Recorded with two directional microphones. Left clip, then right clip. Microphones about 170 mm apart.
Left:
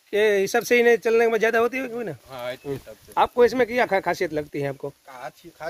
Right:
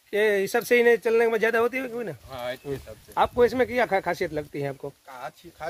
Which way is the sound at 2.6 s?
80° left.